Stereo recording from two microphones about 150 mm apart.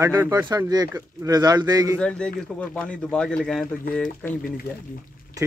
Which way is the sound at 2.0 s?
5° left (ahead or behind).